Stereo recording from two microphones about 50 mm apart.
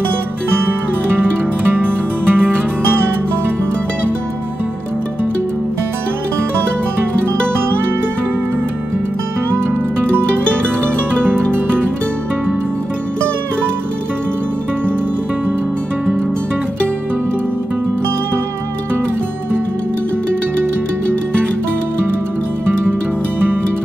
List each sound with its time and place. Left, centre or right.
0.6 s music: right